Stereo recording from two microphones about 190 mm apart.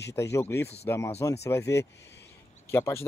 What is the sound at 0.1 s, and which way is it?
Speech, 15° left (ahead or behind).